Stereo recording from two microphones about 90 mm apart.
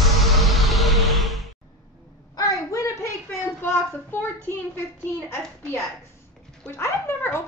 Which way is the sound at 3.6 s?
20° left (ahead or behind).